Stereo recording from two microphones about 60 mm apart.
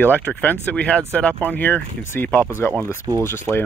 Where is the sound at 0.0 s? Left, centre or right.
Left.